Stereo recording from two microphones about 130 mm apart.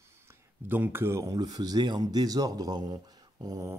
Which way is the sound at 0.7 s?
15° right (ahead or behind).